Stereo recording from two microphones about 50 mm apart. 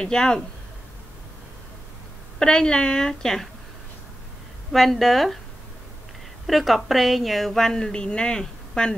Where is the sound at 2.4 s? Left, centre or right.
Centre.